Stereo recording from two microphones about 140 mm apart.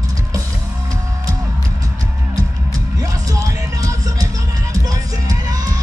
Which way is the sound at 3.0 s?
25° right (ahead or behind).